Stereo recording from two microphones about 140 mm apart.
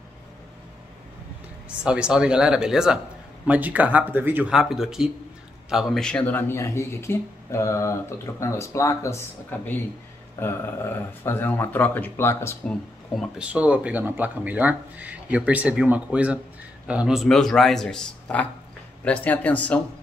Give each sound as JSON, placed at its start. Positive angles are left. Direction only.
{"t": 1.9, "sound": "a man's voice", "side_deg": -5}
{"t": 13.4, "sound": "a man's voice", "side_deg": -10}